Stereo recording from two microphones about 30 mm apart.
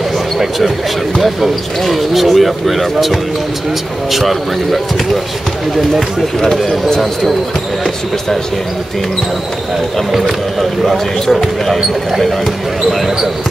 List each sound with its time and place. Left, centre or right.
1.8 s speech: centre
6.4 s speech: centre
10.1 s speech: centre